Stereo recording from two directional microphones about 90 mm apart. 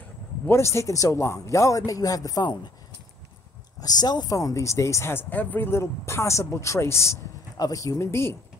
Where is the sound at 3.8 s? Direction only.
50° left (ahead or behind); by 8.3 s 30° left (ahead or behind).